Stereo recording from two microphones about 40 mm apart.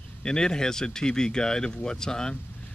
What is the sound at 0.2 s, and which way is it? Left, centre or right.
Speech, centre.